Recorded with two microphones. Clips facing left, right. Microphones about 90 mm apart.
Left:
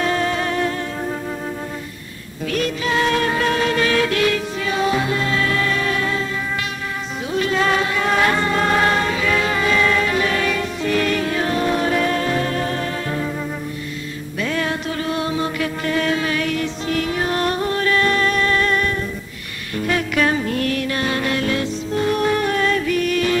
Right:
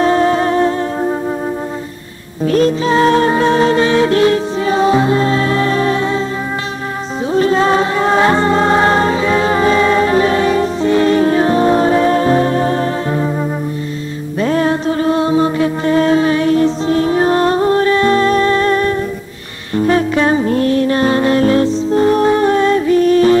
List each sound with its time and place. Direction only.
0.0 s music: 30° right (ahead or behind)
2.4 s music: 35° right (ahead or behind)
7.3 s music: 30° right (ahead or behind)
14.4 s music: 35° right (ahead or behind)